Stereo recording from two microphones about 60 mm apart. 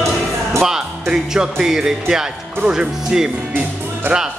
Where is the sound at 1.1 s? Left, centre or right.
Centre.